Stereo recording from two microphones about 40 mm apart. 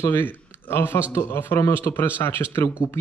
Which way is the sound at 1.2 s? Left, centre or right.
Left.